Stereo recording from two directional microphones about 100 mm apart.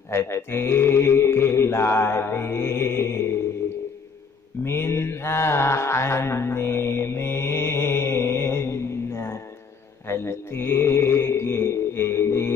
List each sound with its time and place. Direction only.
0.1 s music: 25° left (ahead or behind)
4.6 s mantra: 25° left (ahead or behind)